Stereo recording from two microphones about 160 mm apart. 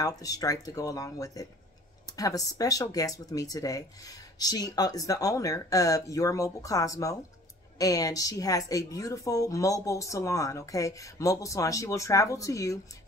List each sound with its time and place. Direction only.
0.2 s speech: 20° left (ahead or behind)